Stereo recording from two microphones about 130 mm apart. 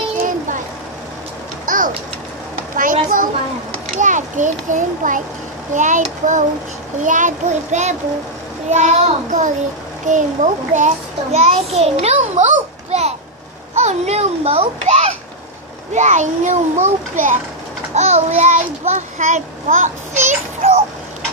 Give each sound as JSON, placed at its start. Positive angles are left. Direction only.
{"t": 1.7, "sound": "pigeon", "side_deg": -90}
{"t": 2.7, "sound": "a sound", "side_deg": -90}
{"t": 3.9, "sound": "a child's voice", "side_deg": -75}
{"t": 11.3, "sound": "a child's voice", "side_deg": -50}
{"t": 15.9, "sound": "a child's voice", "side_deg": -65}
{"t": 17.9, "sound": "a child's voice", "side_deg": -60}